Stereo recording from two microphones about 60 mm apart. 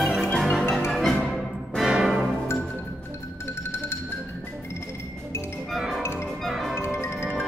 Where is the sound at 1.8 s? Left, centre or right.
Centre.